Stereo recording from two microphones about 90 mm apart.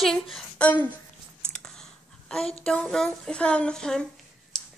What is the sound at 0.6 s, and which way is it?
Speech, 20° left (ahead or behind).